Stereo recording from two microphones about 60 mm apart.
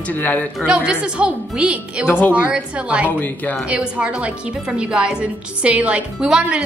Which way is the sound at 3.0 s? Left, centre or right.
Left.